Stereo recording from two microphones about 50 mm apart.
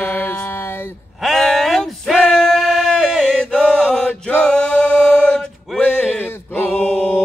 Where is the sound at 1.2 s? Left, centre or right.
Centre.